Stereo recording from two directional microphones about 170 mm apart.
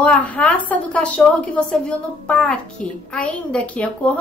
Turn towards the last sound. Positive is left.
turn(degrees=10)  # may be behind; listen again after turning